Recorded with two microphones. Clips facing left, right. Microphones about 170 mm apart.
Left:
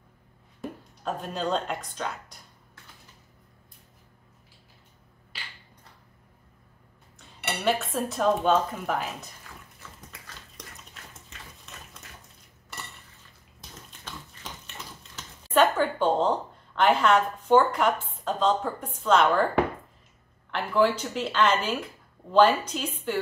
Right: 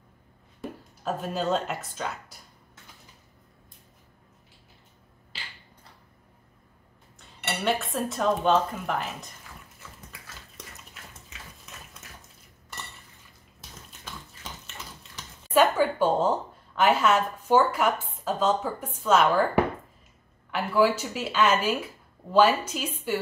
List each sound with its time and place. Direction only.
0.6 s speech: 5° right (ahead or behind)
5.3 s a sound: 25° right (ahead or behind)
7.6 s speech: centre (ahead or behind)
15.5 s a sound: 10° right (ahead or behind)
19.0 s a woman's voice: 5° right (ahead or behind)
20.5 s a woman's voice: 10° right (ahead or behind)